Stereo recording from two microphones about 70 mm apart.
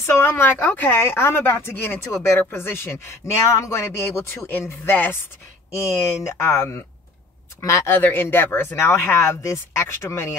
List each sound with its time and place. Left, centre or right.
0.0 s speech: left
8.0 s speech: left